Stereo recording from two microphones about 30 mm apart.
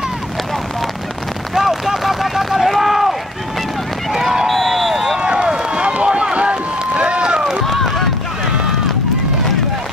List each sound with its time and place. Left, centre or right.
1.5 s run: centre
4.5 s a sound: centre
5.2 s run: right
7.6 s run: centre